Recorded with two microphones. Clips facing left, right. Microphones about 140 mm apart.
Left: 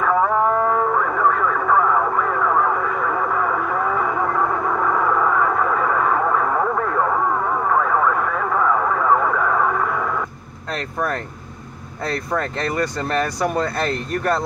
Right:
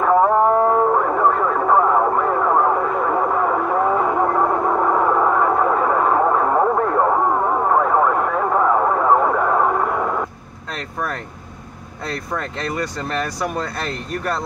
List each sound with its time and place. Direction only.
0.0 s radio: 25° right (ahead or behind)
10.7 s vehicle: 5° right (ahead or behind)
12.5 s speech: 5° right (ahead or behind)